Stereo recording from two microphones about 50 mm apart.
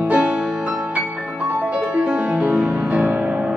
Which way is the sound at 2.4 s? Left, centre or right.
Right.